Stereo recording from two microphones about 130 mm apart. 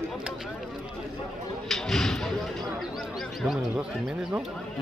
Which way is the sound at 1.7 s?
5° left (ahead or behind).